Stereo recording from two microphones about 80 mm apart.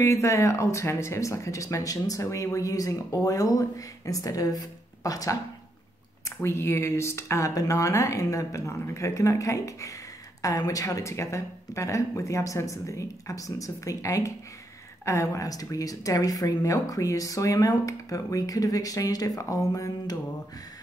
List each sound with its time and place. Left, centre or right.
0.0 s a woman's voice: left